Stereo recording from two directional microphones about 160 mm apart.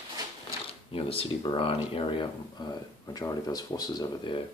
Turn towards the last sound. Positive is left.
turn(degrees=25)  # may be behind; listen again after turning